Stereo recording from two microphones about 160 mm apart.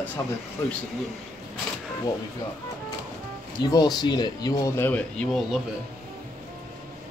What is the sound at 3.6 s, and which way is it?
Speech, 25° left (ahead or behind).